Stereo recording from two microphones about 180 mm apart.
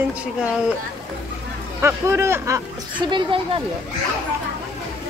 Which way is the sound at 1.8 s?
15° right (ahead or behind).